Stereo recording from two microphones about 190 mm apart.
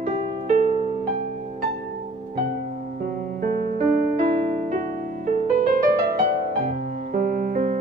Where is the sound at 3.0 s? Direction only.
50° right (ahead or behind).